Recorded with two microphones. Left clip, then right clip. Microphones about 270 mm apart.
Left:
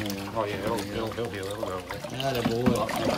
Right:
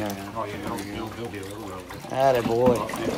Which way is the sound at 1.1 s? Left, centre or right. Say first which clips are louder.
Left 2 dB; centre.